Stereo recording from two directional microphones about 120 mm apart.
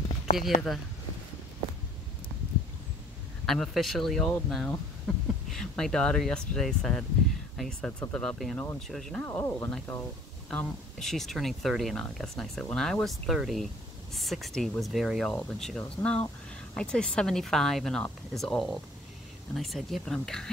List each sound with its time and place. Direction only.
0.4 s speech: centre (ahead or behind)
3.4 s speech: centre (ahead or behind)
9.2 s speech: 20° left (ahead or behind)
9.9 s speech: 5° left (ahead or behind)